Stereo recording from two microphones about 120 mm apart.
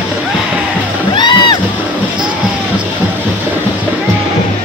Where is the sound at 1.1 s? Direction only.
40° left (ahead or behind).